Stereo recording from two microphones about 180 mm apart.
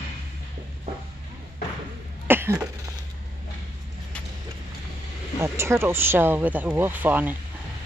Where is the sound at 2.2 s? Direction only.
10° right (ahead or behind).